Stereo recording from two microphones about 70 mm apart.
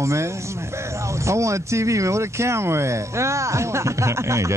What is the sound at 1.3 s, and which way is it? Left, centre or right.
Speech, right.